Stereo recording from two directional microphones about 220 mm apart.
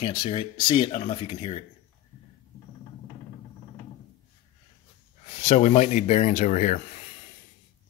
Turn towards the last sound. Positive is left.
turn(degrees=35)  # may be behind; listen again after turning